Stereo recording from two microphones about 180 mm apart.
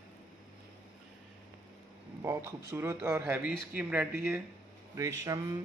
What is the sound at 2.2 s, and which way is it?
A man's voice, 15° right (ahead or behind).